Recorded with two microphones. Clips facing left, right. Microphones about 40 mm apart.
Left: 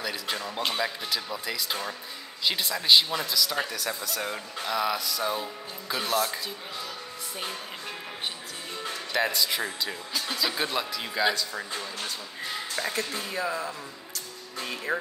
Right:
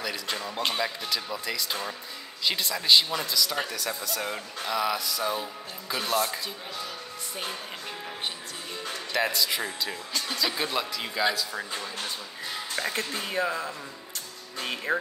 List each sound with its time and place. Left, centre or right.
0.0 s speech: centre
8.8 s speech: centre
13.1 s speech: right
14.9 s music: centre